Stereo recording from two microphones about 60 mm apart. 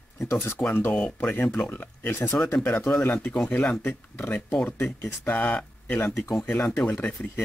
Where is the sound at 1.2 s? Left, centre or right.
Left.